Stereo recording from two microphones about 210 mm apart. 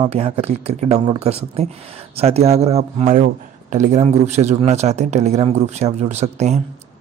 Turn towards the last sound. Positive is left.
turn(degrees=-30)  # may be behind; listen again after turning